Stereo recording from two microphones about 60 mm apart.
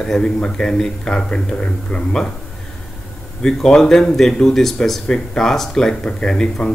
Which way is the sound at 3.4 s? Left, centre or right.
Centre.